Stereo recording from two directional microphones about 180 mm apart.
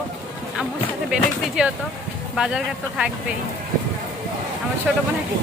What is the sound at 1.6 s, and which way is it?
Speech, 5° right (ahead or behind).